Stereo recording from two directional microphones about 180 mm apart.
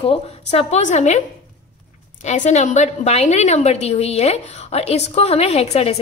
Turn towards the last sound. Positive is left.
turn(degrees=35)  # may be behind; listen again after turning